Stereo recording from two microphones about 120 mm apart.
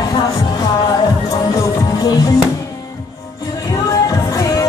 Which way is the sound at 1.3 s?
30° left (ahead or behind).